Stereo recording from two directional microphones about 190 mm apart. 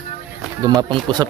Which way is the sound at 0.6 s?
20° right (ahead or behind).